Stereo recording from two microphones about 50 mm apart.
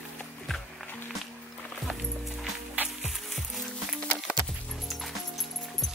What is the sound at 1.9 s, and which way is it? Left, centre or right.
Music, centre.